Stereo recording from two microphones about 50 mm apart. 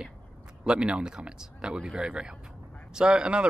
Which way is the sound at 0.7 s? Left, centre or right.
Right.